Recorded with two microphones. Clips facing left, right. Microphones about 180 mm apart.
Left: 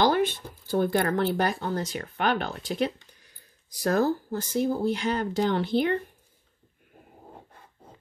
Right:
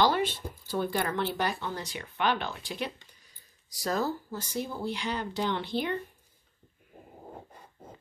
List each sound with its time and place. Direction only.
0.0 s speech: 50° left (ahead or behind)
3.8 s speech: 55° left (ahead or behind)